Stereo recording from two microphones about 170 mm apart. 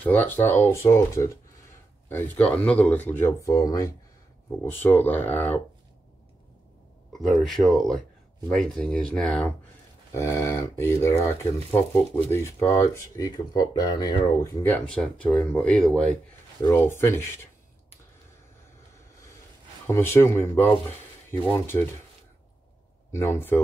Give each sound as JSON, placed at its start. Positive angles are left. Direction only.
{"t": 0.0, "sound": "speech", "side_deg": 10}
{"t": 7.1, "sound": "speech", "side_deg": 0}
{"t": 10.1, "sound": "speech", "side_deg": 15}
{"t": 19.9, "sound": "speech", "side_deg": 15}
{"t": 23.1, "sound": "speech", "side_deg": 15}